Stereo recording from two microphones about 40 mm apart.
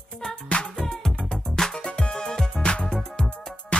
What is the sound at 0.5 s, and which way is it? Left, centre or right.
Music, left.